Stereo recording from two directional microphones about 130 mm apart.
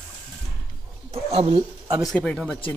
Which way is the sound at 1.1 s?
50° right (ahead or behind).